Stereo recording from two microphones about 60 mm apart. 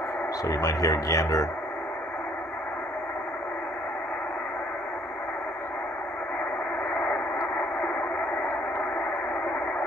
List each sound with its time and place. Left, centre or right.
0.5 s speech: left